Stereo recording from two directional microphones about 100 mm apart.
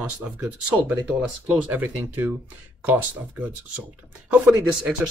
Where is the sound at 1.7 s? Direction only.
20° right (ahead or behind).